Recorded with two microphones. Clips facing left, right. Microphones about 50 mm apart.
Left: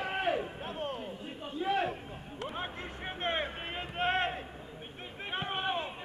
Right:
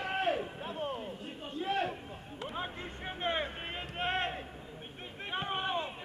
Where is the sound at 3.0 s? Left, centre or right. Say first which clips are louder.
Even; centre.